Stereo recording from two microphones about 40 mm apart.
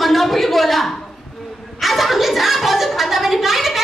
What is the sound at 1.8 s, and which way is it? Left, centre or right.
A woman's voice, centre.